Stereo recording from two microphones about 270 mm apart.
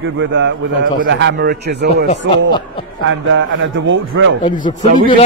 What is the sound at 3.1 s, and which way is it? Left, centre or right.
A man's voice, right.